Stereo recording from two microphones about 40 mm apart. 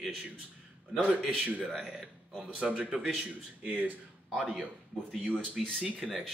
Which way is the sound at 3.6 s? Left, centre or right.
Right.